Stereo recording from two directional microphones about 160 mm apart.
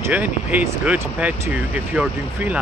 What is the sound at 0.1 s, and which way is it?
Speech, 10° right (ahead or behind).